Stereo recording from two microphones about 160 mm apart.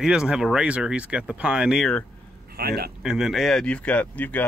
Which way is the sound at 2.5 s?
75° right (ahead or behind).